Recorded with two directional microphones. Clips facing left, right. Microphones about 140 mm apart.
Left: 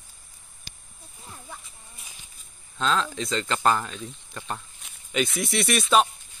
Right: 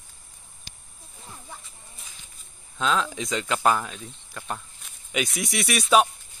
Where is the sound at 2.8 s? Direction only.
10° right (ahead or behind).